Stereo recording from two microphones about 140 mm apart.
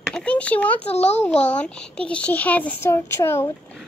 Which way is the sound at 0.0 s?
5° left (ahead or behind).